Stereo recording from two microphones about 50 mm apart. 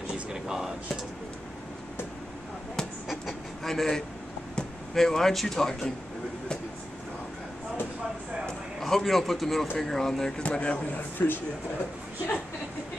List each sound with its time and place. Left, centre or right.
0.3 s a sound: centre
3.1 s vehicle: centre
4.6 s speech: centre
8.5 s a man's voice: centre
10.4 s a man's voice: left
11.0 s speech: left